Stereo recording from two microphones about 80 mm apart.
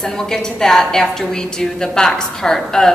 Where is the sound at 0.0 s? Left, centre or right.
Centre.